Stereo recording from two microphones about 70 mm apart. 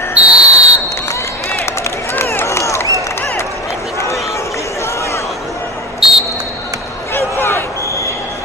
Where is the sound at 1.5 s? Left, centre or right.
Left.